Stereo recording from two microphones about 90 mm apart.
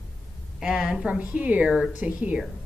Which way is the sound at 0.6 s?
10° right (ahead or behind).